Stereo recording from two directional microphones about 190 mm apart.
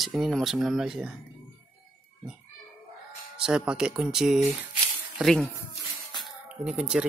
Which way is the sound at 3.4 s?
5° right (ahead or behind).